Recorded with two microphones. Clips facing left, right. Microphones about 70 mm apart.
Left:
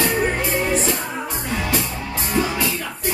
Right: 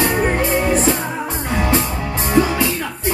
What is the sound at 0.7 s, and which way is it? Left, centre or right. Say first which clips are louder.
Music: right 4 dB; right.